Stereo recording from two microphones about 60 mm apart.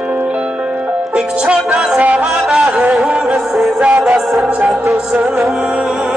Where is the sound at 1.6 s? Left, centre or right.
Centre.